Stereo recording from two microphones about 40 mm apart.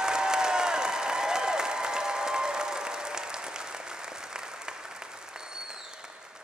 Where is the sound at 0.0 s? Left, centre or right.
Centre.